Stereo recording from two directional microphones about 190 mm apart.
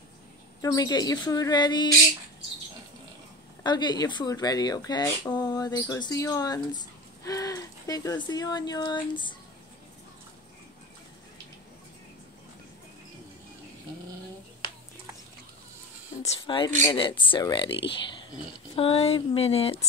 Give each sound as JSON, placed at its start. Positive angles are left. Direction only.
{"t": 0.6, "sound": "speech", "side_deg": 20}
{"t": 3.6, "sound": "speech", "side_deg": 20}
{"t": 16.2, "sound": "speech", "side_deg": 30}
{"t": 18.8, "sound": "speech", "side_deg": 30}